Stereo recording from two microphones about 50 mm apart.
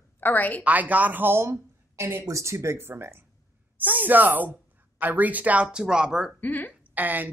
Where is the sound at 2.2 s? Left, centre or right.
Right.